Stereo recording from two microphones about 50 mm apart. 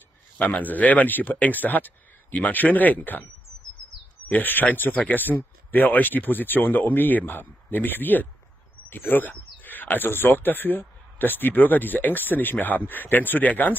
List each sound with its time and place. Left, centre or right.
0.4 s speech: left
4.3 s speech: left